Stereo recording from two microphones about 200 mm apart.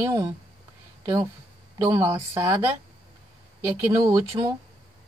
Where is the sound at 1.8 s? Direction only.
15° right (ahead or behind).